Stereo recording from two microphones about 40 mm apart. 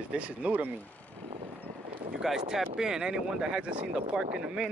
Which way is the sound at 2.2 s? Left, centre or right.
Centre.